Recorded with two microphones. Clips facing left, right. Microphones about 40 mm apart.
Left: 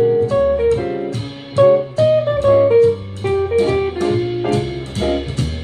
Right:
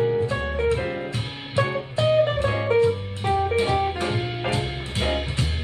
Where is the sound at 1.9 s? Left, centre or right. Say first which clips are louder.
Left 6 dB; right.